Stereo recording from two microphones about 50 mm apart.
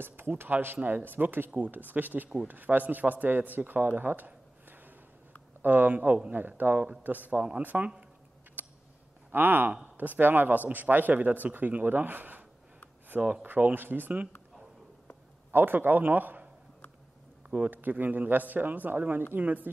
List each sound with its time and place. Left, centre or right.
0.0 s speech: right
0.7 s a man's voice: right
4.6 s a sound: right
5.6 s a man's voice: right
6.3 s a man's voice: right
8.6 s a sound: right
9.3 s a man's voice: right
13.2 s speech: right
13.5 s a man's voice: right
15.5 s a man's voice: right
17.5 s a man's voice: right